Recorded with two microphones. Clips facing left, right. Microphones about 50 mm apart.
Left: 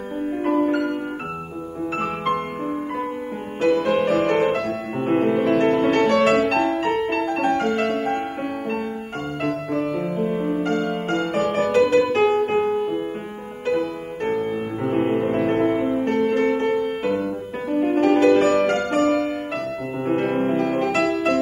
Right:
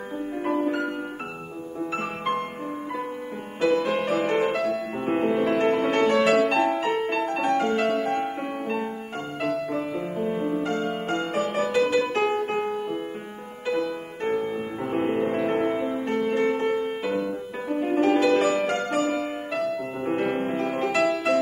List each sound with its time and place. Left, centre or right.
0.4 s music: left
2.0 s music: left
3.6 s music: left
15.3 s music: left